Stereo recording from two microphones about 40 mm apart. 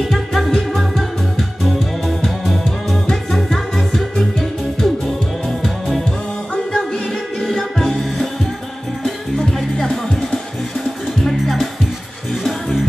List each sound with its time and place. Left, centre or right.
0.1 s music: centre
7.4 s music: centre
9.4 s music: centre
11.3 s music: centre